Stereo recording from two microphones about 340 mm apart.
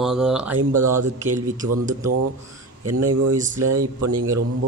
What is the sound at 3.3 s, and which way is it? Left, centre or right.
Speech, right.